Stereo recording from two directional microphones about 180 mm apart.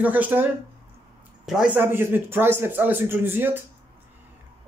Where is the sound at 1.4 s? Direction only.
5° right (ahead or behind).